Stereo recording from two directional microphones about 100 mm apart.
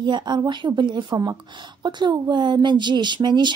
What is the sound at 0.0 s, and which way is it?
Speech, 50° right (ahead or behind).